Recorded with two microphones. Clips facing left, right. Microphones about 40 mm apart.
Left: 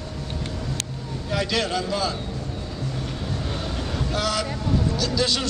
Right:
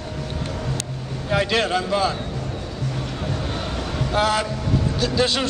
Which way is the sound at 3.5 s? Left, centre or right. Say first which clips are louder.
Right 2 dB; right.